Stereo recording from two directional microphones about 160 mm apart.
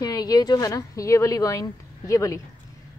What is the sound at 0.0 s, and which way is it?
A woman's voice, 25° left (ahead or behind).